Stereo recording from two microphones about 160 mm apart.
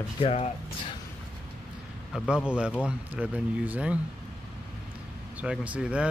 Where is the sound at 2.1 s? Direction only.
5° right (ahead or behind).